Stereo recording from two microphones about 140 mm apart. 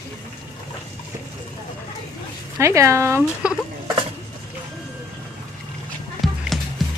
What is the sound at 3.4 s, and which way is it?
Speech, 10° right (ahead or behind).